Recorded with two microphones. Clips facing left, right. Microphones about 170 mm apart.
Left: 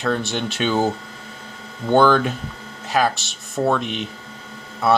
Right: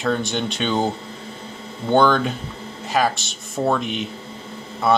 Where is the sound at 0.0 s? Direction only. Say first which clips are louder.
Even; centre (ahead or behind).